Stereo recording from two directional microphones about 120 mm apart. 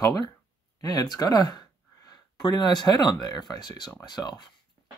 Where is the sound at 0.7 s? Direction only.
35° left (ahead or behind).